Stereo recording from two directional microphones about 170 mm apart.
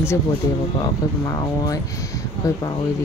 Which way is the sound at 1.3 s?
20° left (ahead or behind).